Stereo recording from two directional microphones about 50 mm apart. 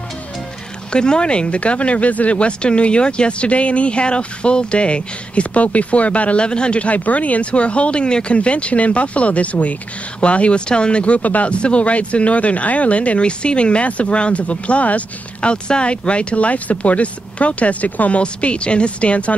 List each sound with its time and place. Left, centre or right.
0.9 s speech: centre